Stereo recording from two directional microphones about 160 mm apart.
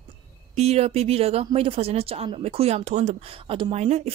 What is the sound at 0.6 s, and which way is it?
Speech, 40° right (ahead or behind).